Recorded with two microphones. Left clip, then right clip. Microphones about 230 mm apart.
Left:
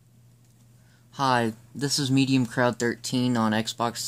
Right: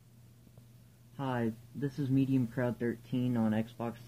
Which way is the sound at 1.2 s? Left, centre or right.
Left.